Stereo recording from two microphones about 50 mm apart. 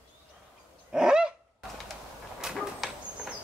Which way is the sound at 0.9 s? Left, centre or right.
Centre.